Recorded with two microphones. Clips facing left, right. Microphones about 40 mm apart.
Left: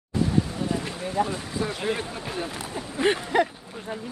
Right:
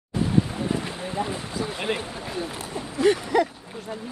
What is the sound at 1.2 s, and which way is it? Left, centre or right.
Speech, centre.